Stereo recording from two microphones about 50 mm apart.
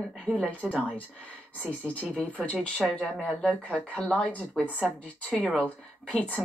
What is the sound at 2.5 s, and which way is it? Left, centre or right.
Speech, centre.